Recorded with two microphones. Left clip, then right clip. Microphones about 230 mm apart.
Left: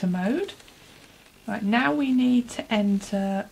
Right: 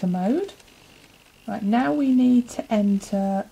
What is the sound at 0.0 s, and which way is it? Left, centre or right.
Speech, centre.